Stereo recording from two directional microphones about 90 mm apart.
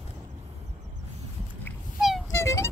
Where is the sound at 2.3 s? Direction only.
30° left (ahead or behind).